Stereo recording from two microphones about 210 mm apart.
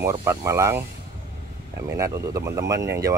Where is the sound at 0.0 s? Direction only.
15° right (ahead or behind).